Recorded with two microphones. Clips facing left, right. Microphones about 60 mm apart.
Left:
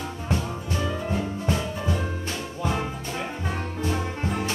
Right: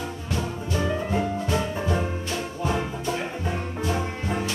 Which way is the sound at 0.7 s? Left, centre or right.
Right.